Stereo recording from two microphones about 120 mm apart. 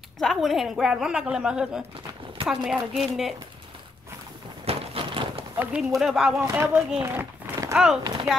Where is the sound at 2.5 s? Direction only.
5° right (ahead or behind).